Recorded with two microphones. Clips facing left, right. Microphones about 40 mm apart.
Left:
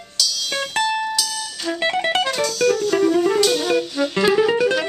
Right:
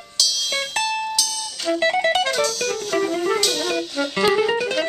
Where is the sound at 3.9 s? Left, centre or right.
Centre.